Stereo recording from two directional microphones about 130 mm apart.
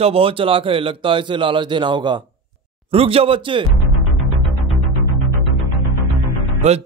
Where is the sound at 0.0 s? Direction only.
45° right (ahead or behind).